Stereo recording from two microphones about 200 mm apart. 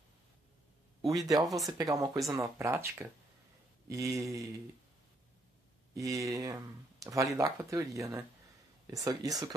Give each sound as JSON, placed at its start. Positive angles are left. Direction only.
{"t": 1.0, "sound": "speech", "side_deg": -15}
{"t": 5.9, "sound": "speech", "side_deg": -15}